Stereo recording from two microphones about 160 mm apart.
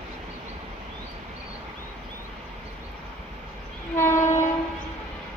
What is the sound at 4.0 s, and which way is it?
Train, 15° left (ahead or behind).